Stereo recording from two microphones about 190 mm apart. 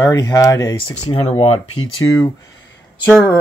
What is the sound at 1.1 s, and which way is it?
Speech, 35° left (ahead or behind).